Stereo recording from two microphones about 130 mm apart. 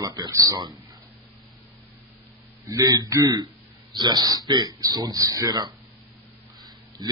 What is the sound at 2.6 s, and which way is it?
A man's voice, 30° right (ahead or behind).